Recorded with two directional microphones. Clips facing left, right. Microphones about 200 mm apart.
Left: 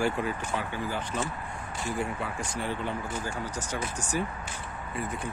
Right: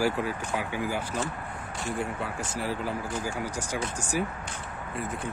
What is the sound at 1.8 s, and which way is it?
Speech, centre (ahead or behind).